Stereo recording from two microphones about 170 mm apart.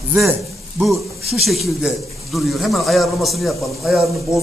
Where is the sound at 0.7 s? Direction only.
Centre (ahead or behind).